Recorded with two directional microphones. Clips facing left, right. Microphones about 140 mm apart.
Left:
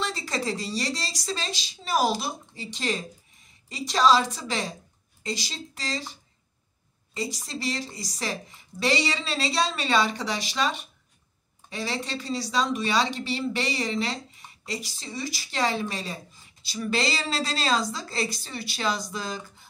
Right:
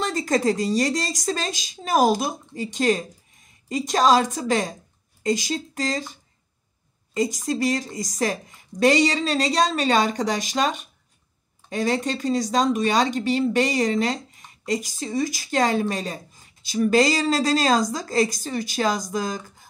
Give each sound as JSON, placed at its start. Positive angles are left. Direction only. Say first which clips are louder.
{"t": 0.0, "sound": "a woman's voice", "louder": "right 8 dB", "side_deg": -45}
{"t": 7.2, "sound": "a woman's voice", "louder": "right 10 dB", "side_deg": -45}